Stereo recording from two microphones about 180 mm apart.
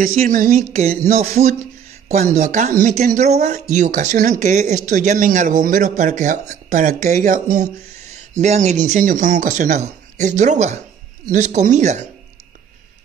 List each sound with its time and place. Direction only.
0.0 s speech: 50° right (ahead or behind)
0.8 s speech: 35° right (ahead or behind)
1.5 s a sound: 40° right (ahead or behind)
2.3 s speech: 40° right (ahead or behind)